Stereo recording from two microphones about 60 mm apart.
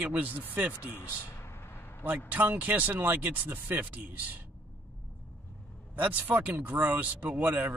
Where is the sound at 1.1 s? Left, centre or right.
Left.